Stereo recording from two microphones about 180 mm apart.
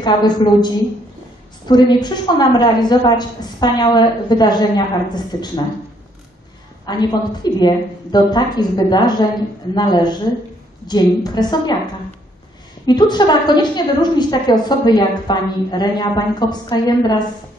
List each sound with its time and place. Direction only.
0.0 s a woman's voice: 25° left (ahead or behind)
6.9 s a woman's voice: 25° left (ahead or behind)